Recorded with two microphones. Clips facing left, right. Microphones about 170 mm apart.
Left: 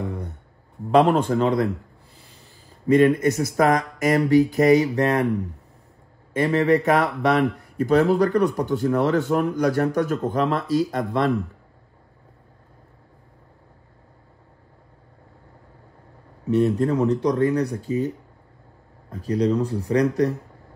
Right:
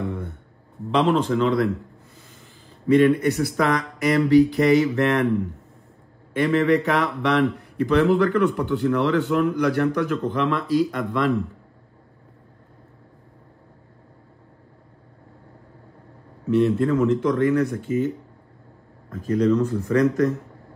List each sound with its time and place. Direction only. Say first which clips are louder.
0.0 s a sound: right 1 dB; 40° left (ahead or behind)
0.9 s speech: left 3 dB; 55° left (ahead or behind)
2.9 s a man's voice: even; 40° left (ahead or behind)
5.2 s speech: right 2 dB; 15° left (ahead or behind)
6.3 s a man's voice: even; 40° left (ahead or behind)
16.4 s a man's voice: right 1 dB; 40° left (ahead or behind)